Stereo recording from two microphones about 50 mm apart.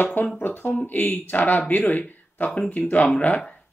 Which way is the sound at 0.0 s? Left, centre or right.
Left.